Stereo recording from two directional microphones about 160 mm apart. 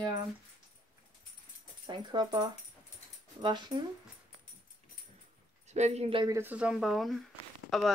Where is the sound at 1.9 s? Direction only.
30° right (ahead or behind).